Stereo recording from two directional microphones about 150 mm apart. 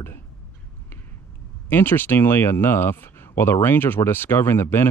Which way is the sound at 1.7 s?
15° left (ahead or behind).